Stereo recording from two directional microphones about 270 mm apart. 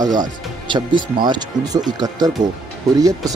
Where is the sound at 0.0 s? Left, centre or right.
Centre.